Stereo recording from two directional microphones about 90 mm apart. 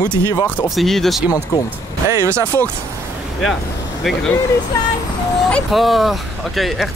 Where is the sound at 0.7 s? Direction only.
5° left (ahead or behind).